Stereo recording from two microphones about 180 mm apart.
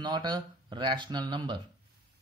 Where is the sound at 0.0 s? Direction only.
25° right (ahead or behind).